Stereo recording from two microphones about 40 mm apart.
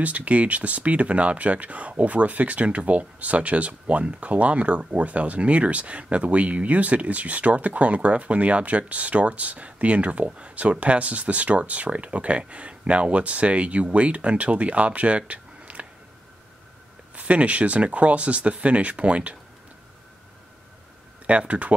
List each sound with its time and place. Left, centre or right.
0.0 s speech: right
17.1 s speech: right
21.3 s speech: right